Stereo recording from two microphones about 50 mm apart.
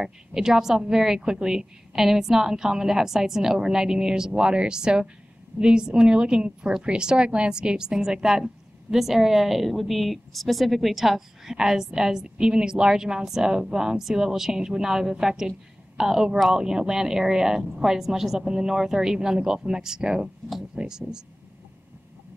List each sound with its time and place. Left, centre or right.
0.0 s a woman's voice: centre